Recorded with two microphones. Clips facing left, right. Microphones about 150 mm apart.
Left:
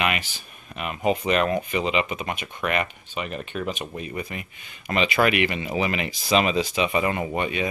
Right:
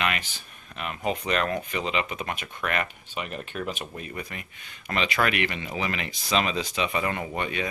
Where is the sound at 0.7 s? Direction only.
10° left (ahead or behind).